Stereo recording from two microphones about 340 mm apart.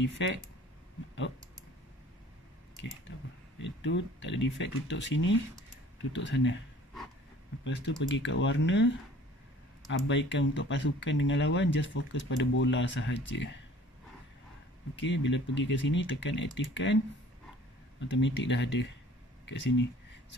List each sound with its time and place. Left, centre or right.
0.0 s speech: left
3.5 s speech: left
7.6 s speech: left
15.0 s speech: left
18.1 s speech: left